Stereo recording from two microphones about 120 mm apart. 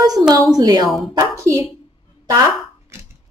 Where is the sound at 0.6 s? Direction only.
35° right (ahead or behind).